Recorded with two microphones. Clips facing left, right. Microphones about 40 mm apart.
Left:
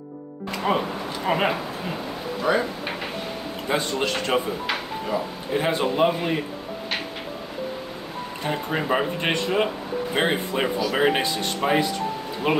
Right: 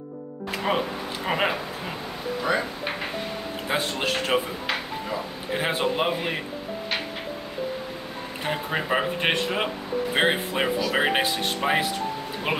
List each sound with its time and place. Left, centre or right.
0.7 s speech: centre
3.6 s speech: centre
5.5 s speech: centre
8.5 s speech: centre
12.4 s speech: right